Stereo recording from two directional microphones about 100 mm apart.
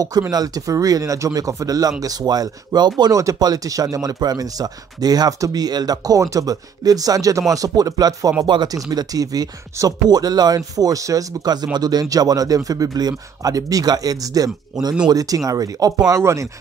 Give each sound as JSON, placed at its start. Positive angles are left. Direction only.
{"t": 0.3, "sound": "speech", "side_deg": -40}